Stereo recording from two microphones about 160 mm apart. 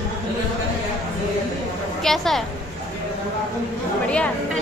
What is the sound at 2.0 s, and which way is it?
Speech, centre (ahead or behind).